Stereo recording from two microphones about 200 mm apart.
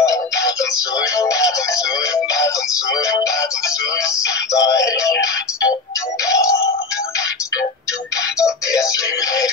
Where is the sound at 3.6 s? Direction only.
15° left (ahead or behind).